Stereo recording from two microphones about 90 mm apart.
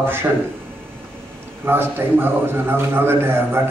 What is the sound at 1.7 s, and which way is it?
A man's voice, 25° right (ahead or behind).